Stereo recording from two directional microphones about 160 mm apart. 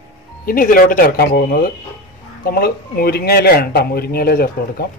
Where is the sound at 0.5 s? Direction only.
60° left (ahead or behind).